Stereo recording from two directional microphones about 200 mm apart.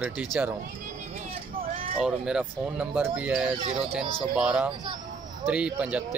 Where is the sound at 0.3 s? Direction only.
5° right (ahead or behind).